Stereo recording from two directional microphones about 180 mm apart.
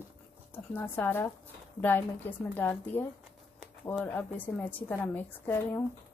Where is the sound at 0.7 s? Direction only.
10° left (ahead or behind).